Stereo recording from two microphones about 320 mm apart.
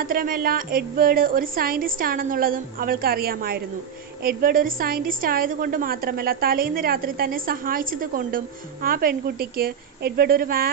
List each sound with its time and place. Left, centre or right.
0.0 s a woman's voice: right